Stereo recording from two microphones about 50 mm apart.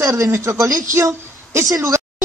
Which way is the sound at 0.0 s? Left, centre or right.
Right.